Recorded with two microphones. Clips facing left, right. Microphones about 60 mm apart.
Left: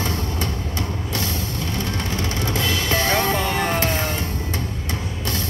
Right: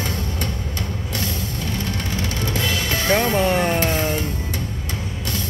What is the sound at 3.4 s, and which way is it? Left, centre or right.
Speech, centre.